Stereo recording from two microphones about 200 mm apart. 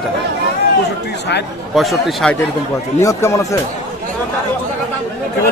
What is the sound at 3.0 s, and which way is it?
Speech, 15° left (ahead or behind).